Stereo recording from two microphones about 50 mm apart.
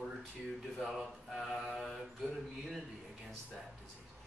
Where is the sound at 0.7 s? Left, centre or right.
Centre.